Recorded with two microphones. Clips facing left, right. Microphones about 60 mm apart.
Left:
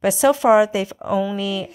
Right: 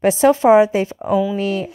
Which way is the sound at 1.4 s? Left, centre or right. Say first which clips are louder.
Right 4 dB; right.